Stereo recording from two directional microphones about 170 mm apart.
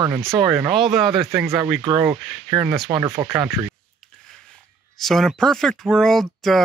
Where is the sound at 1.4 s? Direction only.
15° right (ahead or behind).